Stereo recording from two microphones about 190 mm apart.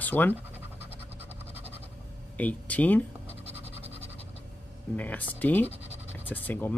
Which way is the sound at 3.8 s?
30° right (ahead or behind).